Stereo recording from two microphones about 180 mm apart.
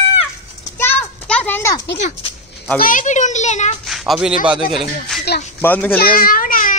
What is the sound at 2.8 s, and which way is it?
Speech, 45° left (ahead or behind).